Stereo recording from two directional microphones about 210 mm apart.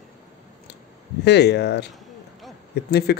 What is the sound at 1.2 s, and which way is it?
A man's voice, 55° left (ahead or behind).